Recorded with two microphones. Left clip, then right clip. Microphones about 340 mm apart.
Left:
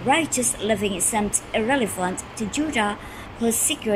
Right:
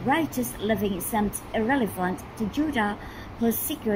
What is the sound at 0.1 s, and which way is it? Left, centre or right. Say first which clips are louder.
A woman's voice: left 5 dB; centre.